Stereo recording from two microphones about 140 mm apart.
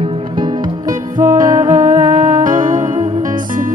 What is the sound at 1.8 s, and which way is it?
Music, 65° right (ahead or behind).